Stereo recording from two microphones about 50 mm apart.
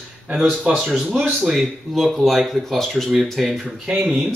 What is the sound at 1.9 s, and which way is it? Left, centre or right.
Speech, centre.